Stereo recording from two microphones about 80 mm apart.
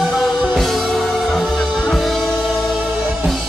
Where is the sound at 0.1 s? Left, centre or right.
Centre.